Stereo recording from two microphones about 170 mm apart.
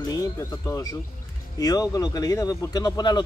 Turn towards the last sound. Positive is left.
turn(degrees=25)  # may be behind; listen again after turning